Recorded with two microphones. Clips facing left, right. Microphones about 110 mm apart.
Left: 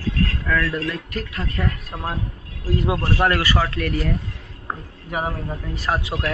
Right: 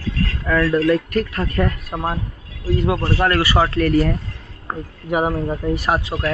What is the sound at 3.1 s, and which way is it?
Speech, 10° left (ahead or behind).